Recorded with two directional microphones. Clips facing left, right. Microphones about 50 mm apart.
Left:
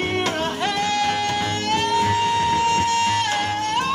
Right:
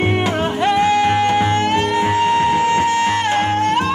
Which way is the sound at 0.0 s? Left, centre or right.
Centre.